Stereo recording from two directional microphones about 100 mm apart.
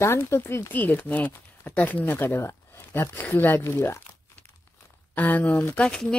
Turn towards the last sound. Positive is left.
turn(degrees=10)  # may be behind; listen again after turning